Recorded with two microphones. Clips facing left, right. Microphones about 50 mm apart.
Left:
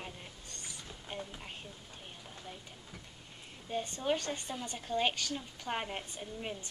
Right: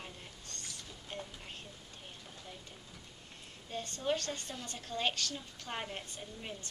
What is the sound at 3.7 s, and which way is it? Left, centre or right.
A woman's voice, centre.